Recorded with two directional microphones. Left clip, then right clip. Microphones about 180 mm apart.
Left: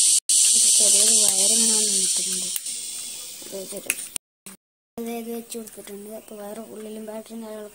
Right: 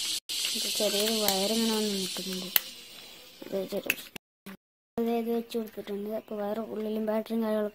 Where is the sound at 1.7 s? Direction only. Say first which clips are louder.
Left 6 dB; 25° right (ahead or behind).